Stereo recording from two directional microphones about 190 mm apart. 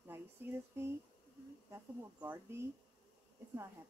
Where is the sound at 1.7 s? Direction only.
10° right (ahead or behind).